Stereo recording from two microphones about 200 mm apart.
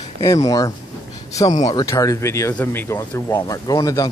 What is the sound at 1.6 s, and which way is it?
Speech, 15° left (ahead or behind).